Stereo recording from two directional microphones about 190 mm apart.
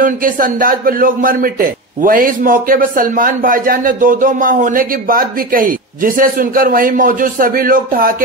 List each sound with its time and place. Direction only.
0.0 s a man's voice: 45° right (ahead or behind)